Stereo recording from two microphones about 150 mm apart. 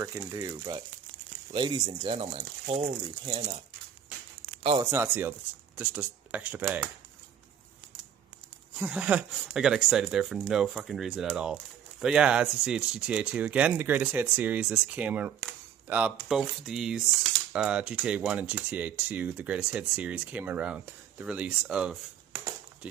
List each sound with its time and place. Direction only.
0.0 s speech: 20° right (ahead or behind); by 3.5 s 40° right (ahead or behind)
4.9 s speech: 15° right (ahead or behind)
8.7 s speech: 10° right (ahead or behind)